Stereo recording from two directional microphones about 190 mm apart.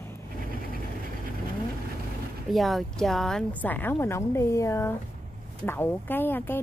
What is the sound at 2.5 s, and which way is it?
A woman's voice, centre (ahead or behind).